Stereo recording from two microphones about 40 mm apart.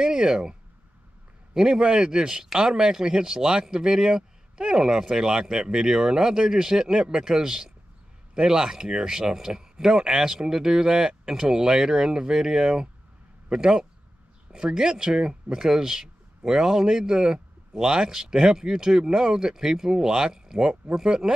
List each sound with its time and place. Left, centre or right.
0.0 s a man's voice: centre